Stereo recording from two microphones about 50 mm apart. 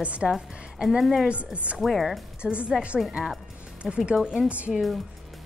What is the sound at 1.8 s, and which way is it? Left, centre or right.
Speech, centre.